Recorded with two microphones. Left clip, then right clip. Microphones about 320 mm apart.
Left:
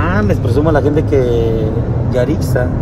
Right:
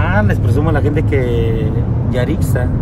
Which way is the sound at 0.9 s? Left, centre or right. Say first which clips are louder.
Left 4 dB; left.